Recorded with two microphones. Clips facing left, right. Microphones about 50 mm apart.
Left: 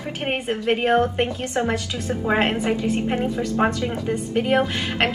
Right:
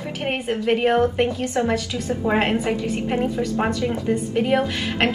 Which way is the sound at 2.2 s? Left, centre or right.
Centre.